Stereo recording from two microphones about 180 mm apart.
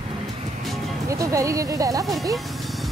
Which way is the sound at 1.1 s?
20° right (ahead or behind).